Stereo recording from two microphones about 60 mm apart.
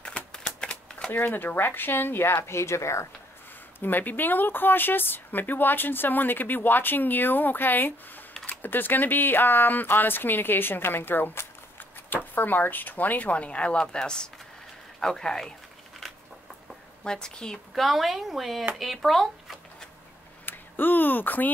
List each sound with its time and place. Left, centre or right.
0.0 s typewriter: centre
1.1 s speech: left
2.4 s speech: left
3.8 s a woman's voice: left; by 15.5 s centre
17.0 s a woman's voice: centre
17.8 s speech: centre
20.4 s speech: left